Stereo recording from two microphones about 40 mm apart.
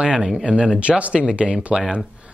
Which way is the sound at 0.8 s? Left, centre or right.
Right.